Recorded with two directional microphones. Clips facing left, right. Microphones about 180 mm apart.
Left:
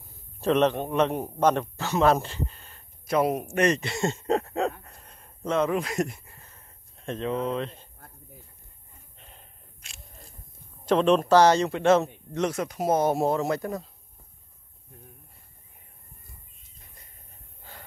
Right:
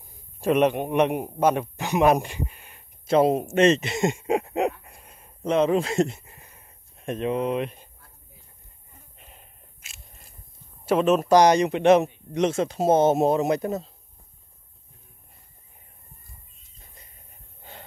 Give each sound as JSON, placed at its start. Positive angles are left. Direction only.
{"t": 0.4, "sound": "a man's voice", "side_deg": -10}
{"t": 3.1, "sound": "speech", "side_deg": -25}
{"t": 4.8, "sound": "a sound", "side_deg": -10}
{"t": 9.2, "sound": "gasp", "side_deg": -5}
{"t": 10.9, "sound": "a man's voice", "side_deg": -5}
{"t": 17.6, "sound": "snort", "side_deg": -20}